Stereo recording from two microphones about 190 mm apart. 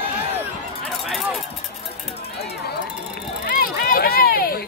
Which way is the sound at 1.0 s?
Centre (ahead or behind).